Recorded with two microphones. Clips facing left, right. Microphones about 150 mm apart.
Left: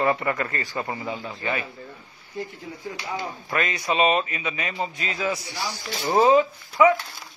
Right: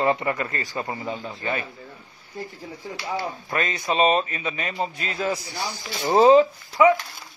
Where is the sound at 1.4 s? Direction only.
35° right (ahead or behind).